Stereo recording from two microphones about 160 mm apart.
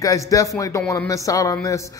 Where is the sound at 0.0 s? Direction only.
20° left (ahead or behind).